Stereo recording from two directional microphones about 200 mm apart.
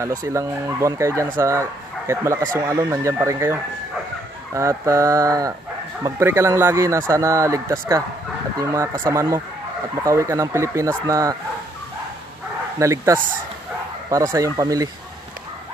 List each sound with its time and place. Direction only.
0.2 s speech: 15° right (ahead or behind)
12.7 s speech: 15° right (ahead or behind)
14.3 s speech: 15° right (ahead or behind)